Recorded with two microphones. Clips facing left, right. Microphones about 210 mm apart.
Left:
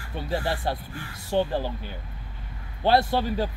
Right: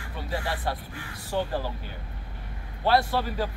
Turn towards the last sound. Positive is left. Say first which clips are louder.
# left 3 dB
turn(degrees=25)  # may be behind; listen again after turning